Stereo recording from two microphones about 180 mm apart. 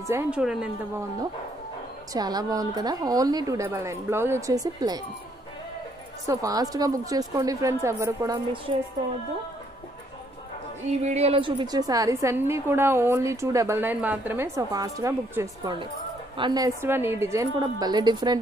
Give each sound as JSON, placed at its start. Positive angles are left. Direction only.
{"t": 0.1, "sound": "speech", "side_deg": -10}
{"t": 2.1, "sound": "a woman's voice", "side_deg": -20}
{"t": 6.2, "sound": "a woman's voice", "side_deg": -20}
{"t": 11.0, "sound": "a woman's voice", "side_deg": -35}